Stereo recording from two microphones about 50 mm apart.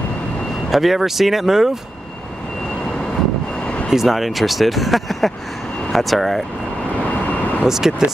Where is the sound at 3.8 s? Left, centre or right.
Centre.